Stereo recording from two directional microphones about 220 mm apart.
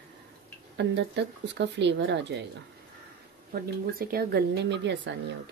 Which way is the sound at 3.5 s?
40° right (ahead or behind).